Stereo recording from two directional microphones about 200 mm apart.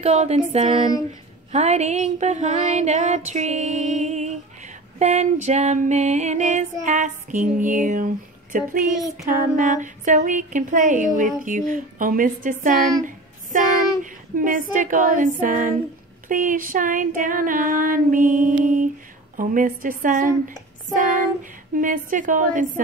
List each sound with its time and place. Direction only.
0.0 s speech: 35° right (ahead or behind)
7.5 s a sound: 40° right (ahead or behind)
9.6 s speech: 40° right (ahead or behind)
13.0 s a sound: 40° right (ahead or behind)
14.3 s speech: 45° right (ahead or behind)
16.3 s child singing: 40° right (ahead or behind)
18.6 s speech: 40° right (ahead or behind)